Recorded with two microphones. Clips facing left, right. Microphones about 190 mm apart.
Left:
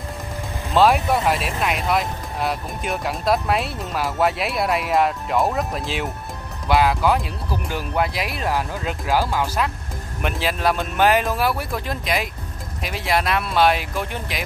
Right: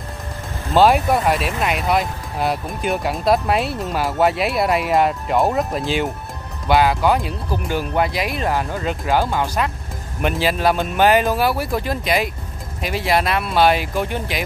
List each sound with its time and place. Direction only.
0.7 s speech: centre (ahead or behind)